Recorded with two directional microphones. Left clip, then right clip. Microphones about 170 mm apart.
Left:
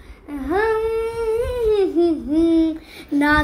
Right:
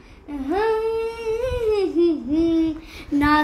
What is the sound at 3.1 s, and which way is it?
Speech, 15° right (ahead or behind).